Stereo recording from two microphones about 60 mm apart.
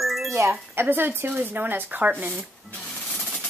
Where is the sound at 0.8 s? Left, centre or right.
Right.